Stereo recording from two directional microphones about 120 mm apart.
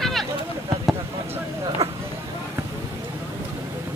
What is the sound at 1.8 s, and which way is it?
Vehicle, 25° right (ahead or behind).